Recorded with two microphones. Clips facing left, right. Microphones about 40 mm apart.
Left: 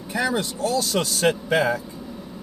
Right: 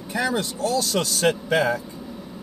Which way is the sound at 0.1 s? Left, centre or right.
Centre.